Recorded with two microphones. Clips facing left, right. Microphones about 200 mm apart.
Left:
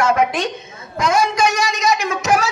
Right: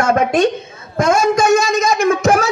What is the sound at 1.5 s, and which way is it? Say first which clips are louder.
A man's voice: right 5 dB; 45° right (ahead or behind).